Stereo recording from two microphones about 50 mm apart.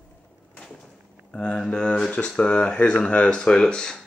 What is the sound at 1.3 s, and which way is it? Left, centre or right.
Speech, centre.